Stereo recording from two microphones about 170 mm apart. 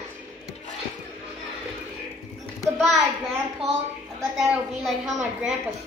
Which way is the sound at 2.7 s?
Centre (ahead or behind).